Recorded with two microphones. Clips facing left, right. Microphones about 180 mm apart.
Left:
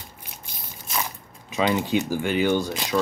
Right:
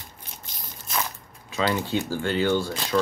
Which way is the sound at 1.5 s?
15° left (ahead or behind).